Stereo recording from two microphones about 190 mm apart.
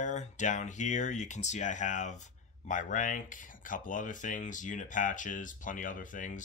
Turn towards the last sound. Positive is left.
turn(degrees=45)  # may be behind; listen again after turning